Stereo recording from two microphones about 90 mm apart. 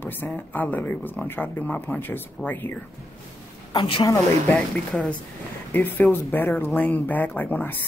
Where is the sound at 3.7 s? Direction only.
60° left (ahead or behind).